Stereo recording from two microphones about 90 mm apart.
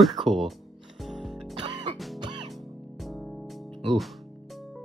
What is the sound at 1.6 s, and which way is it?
Music, 55° right (ahead or behind).